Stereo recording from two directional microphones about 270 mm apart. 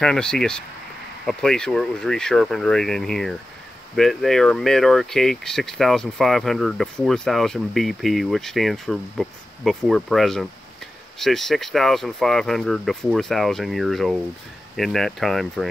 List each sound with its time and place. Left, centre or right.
0.0 s speech: centre